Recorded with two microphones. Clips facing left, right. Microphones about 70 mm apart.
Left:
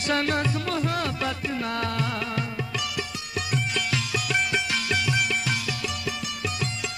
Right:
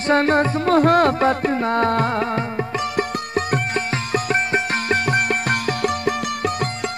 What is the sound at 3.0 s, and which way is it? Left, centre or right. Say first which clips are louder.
Sitar: right 10 dB; right.